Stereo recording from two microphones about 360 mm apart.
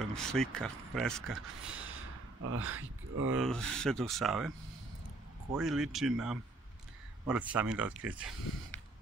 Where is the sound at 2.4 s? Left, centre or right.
Right.